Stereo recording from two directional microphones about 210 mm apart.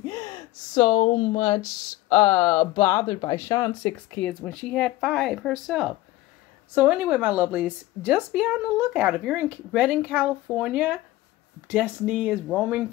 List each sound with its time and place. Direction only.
0.7 s speech: 25° left (ahead or behind); by 12.8 s 5° right (ahead or behind)